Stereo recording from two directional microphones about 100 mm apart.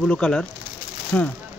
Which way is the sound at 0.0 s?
10° left (ahead or behind).